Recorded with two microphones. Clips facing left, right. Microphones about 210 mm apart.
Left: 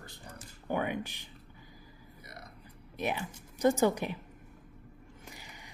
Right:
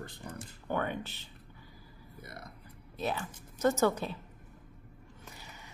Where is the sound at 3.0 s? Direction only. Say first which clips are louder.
Left 1 dB; 15° left (ahead or behind).